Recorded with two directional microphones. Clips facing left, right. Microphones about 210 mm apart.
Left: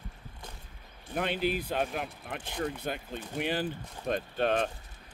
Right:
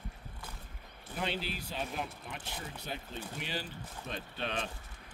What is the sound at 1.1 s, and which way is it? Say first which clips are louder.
Speech: left 7 dB; 55° left (ahead or behind).